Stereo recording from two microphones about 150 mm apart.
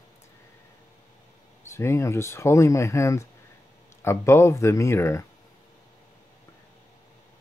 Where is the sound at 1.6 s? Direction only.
20° left (ahead or behind).